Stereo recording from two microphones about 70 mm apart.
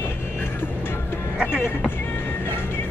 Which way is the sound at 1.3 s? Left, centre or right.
Centre.